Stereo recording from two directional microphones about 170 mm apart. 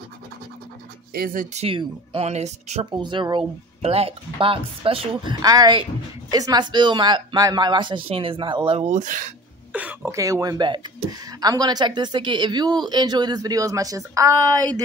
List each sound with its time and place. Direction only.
1.1 s speech: 55° right (ahead or behind)
1.6 s speech: 35° right (ahead or behind)
2.9 s a woman's voice: 25° right (ahead or behind); by 9.3 s 45° right (ahead or behind)
9.7 s a woman's voice: 10° right (ahead or behind)